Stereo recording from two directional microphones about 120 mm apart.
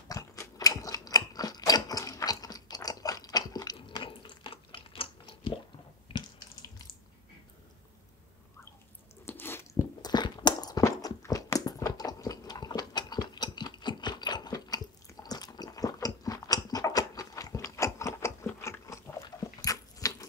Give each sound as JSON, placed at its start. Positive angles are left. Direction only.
{"t": 0.1, "sound": "gears", "side_deg": 30}
{"t": 6.1, "sound": "water", "side_deg": 45}
{"t": 9.2, "sound": "a sound", "side_deg": 15}
{"t": 10.0, "sound": "a sound", "side_deg": 35}
{"t": 15.2, "sound": "chewing", "side_deg": 35}
{"t": 19.2, "sound": "dog", "side_deg": 30}